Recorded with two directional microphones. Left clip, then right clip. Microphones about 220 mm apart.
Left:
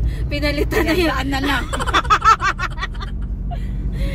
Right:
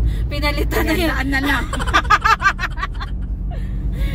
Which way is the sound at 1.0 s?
10° left (ahead or behind).